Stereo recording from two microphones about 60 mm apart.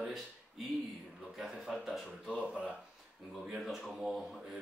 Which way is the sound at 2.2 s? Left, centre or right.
Centre.